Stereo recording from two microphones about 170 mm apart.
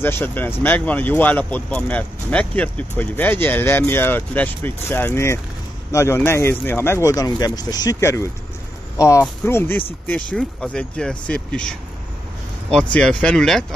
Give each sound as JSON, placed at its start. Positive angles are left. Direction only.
{"t": 0.0, "sound": "speech", "side_deg": 10}
{"t": 12.9, "sound": "speech", "side_deg": 5}